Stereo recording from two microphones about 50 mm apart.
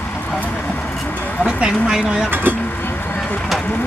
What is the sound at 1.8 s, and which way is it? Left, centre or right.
Speech, centre.